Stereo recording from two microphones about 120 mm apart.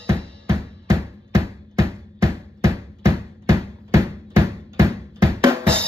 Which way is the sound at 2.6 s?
25° right (ahead or behind).